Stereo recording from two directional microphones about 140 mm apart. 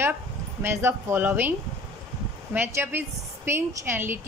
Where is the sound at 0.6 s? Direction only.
15° right (ahead or behind).